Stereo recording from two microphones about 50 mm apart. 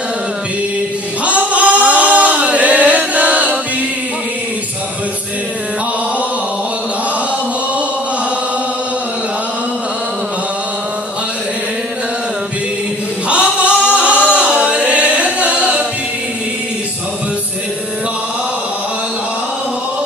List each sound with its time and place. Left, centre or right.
1.2 s singing: right
13.3 s chant: right
13.9 s singing: right
14.3 s music: right